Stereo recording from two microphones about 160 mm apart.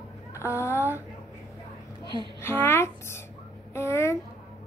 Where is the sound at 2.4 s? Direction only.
15° left (ahead or behind).